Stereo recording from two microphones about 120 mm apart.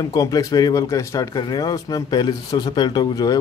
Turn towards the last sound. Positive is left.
turn(degrees=30)  # may be behind; listen again after turning